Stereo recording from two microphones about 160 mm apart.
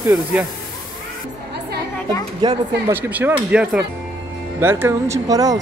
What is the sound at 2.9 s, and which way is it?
Speech, 10° right (ahead or behind).